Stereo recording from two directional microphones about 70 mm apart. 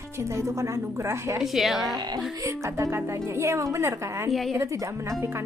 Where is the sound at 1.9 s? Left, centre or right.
Right.